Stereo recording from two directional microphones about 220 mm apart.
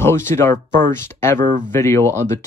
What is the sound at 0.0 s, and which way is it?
Speech, 10° left (ahead or behind).